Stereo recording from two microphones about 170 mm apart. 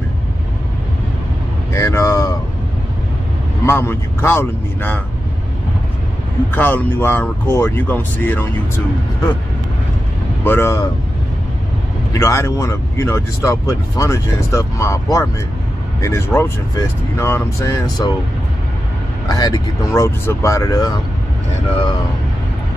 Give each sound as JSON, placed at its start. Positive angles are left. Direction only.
{"t": 1.7, "sound": "vehicle", "side_deg": 15}
{"t": 3.6, "sound": "speech", "side_deg": 15}
{"t": 6.5, "sound": "speech", "side_deg": 10}
{"t": 10.4, "sound": "speech", "side_deg": 15}
{"t": 12.1, "sound": "speech", "side_deg": 15}
{"t": 19.2, "sound": "speech", "side_deg": 20}